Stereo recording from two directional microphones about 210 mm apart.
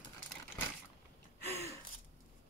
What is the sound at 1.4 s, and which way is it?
Gasp, 10° left (ahead or behind).